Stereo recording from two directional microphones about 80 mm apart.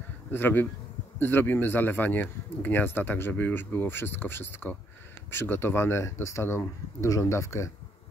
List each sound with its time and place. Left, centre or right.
0.3 s speech: left